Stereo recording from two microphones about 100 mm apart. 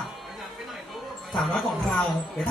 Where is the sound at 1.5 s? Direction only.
10° left (ahead or behind).